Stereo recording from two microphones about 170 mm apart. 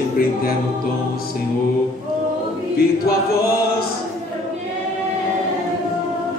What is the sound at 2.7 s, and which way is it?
Choir, 65° left (ahead or behind).